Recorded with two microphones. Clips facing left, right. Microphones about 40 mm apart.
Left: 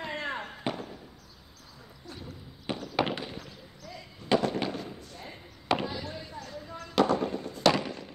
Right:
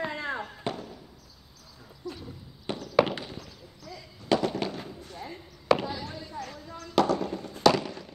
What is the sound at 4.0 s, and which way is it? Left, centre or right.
Fireworks, left.